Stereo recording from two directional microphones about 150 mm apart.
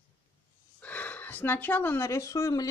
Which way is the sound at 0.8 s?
10° left (ahead or behind).